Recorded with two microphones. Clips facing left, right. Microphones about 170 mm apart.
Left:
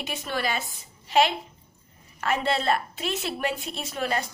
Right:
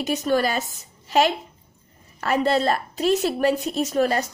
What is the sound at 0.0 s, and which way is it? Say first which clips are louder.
A woman's voice: right 9 dB; 40° right (ahead or behind).